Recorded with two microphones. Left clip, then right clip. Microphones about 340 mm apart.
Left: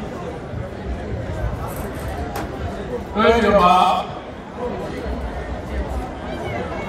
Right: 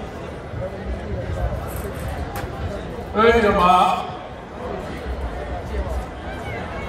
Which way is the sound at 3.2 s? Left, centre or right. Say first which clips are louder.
Left 1 dB; centre.